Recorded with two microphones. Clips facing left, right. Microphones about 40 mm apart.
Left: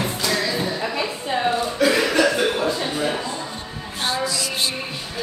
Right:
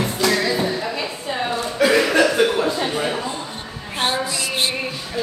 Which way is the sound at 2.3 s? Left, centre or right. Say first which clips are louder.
Right 3 dB; centre.